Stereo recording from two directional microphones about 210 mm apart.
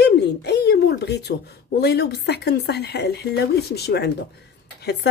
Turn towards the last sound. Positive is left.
turn(degrees=55)  # may be behind; listen again after turning